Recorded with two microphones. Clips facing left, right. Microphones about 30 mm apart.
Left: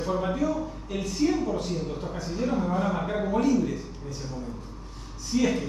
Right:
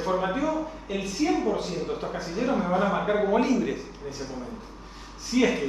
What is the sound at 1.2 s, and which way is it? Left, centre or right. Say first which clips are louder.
Speech: right 1 dB; right.